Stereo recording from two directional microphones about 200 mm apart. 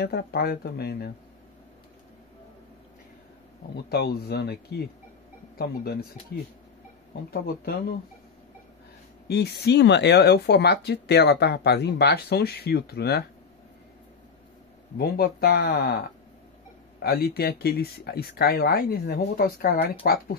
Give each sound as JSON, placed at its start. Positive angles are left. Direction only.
{"t": 0.0, "sound": "speech", "side_deg": 55}
{"t": 3.9, "sound": "speech", "side_deg": 50}
{"t": 9.3, "sound": "speech", "side_deg": 55}
{"t": 15.0, "sound": "speech", "side_deg": 50}
{"t": 17.0, "sound": "speech", "side_deg": 50}